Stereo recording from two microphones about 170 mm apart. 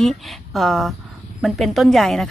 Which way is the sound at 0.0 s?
Centre (ahead or behind).